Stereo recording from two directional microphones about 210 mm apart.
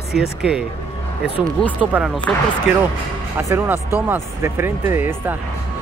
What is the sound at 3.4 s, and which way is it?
Speech, 10° right (ahead or behind).